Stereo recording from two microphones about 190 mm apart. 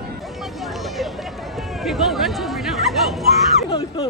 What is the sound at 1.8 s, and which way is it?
Chatter, centre (ahead or behind).